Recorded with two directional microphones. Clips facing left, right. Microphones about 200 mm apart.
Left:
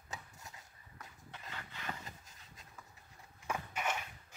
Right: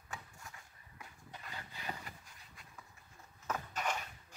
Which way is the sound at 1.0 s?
15° right (ahead or behind).